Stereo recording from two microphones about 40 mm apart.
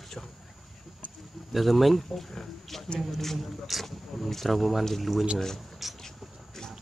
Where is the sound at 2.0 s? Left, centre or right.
Centre.